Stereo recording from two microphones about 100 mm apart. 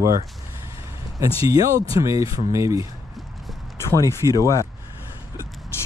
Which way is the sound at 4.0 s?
30° left (ahead or behind).